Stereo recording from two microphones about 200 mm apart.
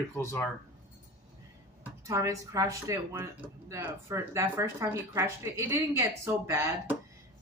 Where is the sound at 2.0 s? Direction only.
15° right (ahead or behind).